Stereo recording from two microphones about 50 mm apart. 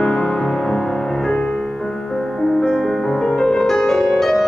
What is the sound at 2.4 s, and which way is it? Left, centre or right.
Music, centre.